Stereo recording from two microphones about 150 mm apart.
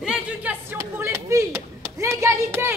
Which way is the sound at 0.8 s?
20° right (ahead or behind).